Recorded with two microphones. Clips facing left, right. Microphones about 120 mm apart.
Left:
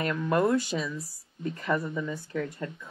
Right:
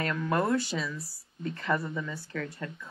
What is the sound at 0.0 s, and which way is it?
Speech, 20° left (ahead or behind).